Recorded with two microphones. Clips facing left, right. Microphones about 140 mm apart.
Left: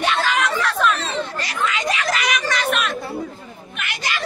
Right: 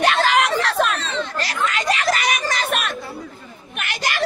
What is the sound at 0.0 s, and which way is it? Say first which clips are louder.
Chatter: right 3 dB; 75° right (ahead or behind).